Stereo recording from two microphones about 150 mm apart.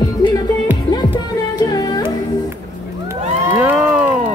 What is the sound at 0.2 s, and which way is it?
Music, 25° left (ahead or behind).